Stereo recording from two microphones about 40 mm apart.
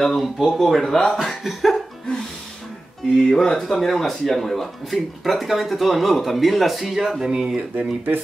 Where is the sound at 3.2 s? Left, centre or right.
Centre.